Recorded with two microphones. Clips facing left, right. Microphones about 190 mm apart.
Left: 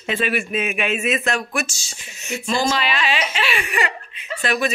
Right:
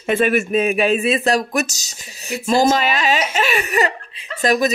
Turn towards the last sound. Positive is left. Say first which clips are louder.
# right 5 dB
turn(degrees=-40)  # may be behind; listen again after turning